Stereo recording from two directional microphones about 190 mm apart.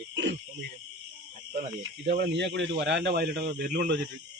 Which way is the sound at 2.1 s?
65° right (ahead or behind).